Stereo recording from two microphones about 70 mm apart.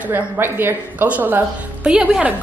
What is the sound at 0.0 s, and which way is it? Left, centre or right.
A woman's voice, right.